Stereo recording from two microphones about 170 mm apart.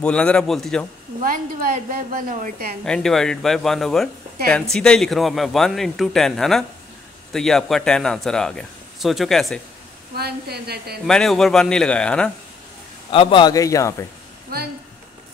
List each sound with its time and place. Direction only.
0.0 s speech: 5° left (ahead or behind)
1.2 s a woman's voice: 55° right (ahead or behind)
2.8 s speech: 5° left (ahead or behind)
10.1 s a woman's voice: 70° right (ahead or behind)
11.1 s speech: 5° left (ahead or behind)
13.1 s a man's voice: 30° left (ahead or behind)
14.5 s a woman's voice: 65° right (ahead or behind)